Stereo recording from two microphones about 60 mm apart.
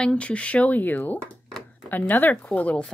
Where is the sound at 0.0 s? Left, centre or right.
Centre.